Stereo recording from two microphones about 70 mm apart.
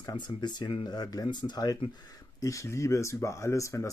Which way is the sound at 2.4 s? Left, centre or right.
Left.